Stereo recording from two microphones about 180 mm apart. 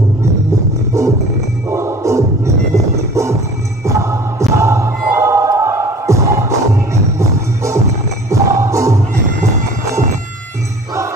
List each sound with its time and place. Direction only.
0.9 s music: 15° right (ahead or behind)